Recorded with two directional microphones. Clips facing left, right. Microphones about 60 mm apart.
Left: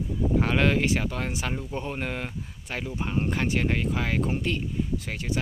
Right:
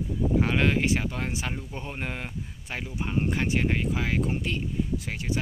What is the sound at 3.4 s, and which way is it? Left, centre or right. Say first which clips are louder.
Speech: even; centre.